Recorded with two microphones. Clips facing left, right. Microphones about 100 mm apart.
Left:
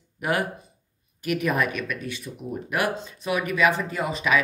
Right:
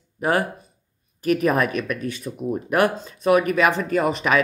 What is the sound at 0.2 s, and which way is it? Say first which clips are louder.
Speech: right 4 dB; 35° right (ahead or behind).